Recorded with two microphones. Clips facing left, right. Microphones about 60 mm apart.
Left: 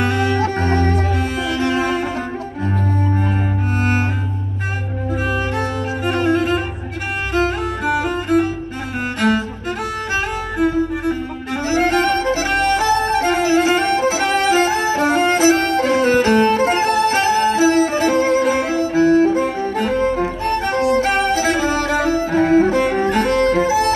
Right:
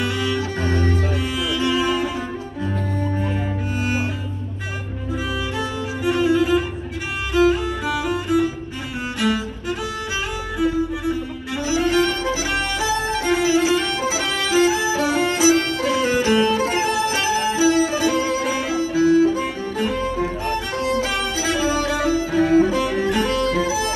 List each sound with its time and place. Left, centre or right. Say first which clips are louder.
0.0 s music: left 5 dB; left
5.3 s music: left 4 dB; left